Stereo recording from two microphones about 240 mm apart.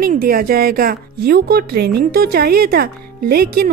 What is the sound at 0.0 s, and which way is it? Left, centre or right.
Speech, right.